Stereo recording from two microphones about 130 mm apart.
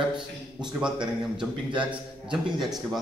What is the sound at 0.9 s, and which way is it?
Speech, 35° right (ahead or behind).